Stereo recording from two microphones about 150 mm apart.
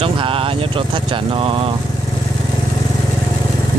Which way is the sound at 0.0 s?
40° right (ahead or behind).